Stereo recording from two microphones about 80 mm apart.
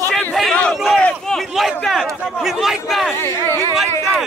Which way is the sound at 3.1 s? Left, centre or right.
Left.